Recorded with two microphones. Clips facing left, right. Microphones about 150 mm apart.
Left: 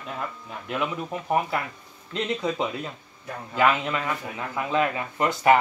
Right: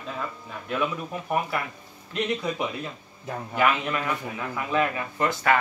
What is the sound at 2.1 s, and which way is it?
Speech, 25° left (ahead or behind).